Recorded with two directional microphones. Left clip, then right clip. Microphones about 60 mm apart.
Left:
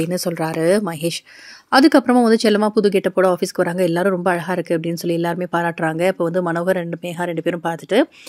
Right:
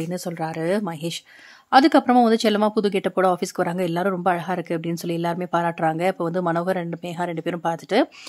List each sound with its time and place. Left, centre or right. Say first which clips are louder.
0.0 s speech: left 6 dB; left
1.7 s a woman's voice: left 2 dB; left
2.9 s speech: left 4 dB; centre
3.5 s speech: left 5 dB; left
5.5 s speech: right 2 dB; centre
5.9 s speech: left 5 dB; left
6.8 s speech: left 3 dB; centre